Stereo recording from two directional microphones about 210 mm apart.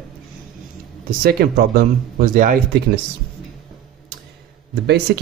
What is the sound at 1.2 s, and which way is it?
Speech, 50° right (ahead or behind).